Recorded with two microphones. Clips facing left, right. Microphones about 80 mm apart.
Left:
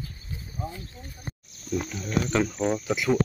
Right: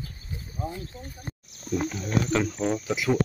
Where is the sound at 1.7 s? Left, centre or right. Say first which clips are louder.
Right 2 dB; centre.